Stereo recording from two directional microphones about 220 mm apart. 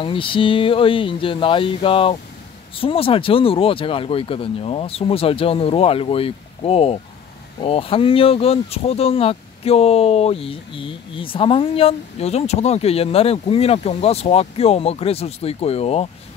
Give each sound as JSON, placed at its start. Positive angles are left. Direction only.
{"t": 0.0, "sound": "speech", "side_deg": 25}